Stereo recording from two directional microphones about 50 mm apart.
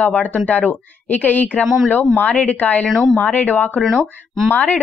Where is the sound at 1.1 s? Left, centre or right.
Left.